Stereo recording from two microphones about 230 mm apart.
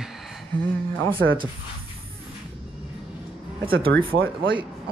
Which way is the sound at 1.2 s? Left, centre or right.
Right.